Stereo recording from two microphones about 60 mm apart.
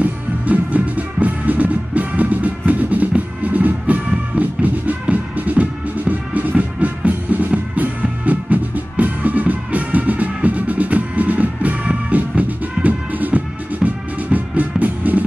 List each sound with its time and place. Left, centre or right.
0.0 s music: right